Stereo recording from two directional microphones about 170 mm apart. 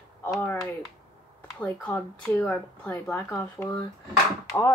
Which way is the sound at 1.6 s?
10° left (ahead or behind).